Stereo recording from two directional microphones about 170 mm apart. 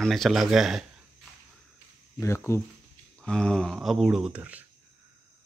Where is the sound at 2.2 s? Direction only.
15° left (ahead or behind).